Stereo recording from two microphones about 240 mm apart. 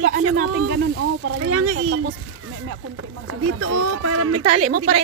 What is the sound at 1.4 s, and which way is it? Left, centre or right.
Speech, right.